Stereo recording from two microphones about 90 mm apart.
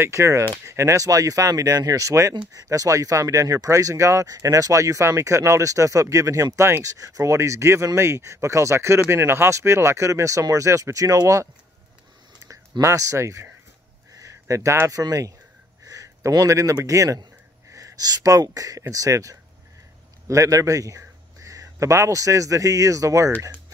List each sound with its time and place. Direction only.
0.0 s speech: 35° right (ahead or behind)
12.8 s speech: 35° right (ahead or behind)
15.9 s a sound: 40° right (ahead or behind)
16.7 s a man's voice: 40° right (ahead or behind)